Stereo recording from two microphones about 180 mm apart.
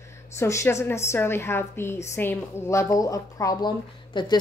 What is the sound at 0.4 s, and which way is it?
A woman's voice, 15° left (ahead or behind).